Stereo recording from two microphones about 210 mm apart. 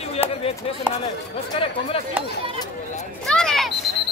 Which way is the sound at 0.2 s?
30° left (ahead or behind).